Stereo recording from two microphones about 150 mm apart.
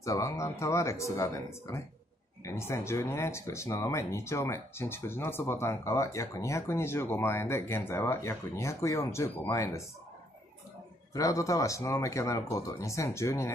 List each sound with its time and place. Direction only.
0.0 s speech: 20° left (ahead or behind)
11.1 s speech: 20° left (ahead or behind)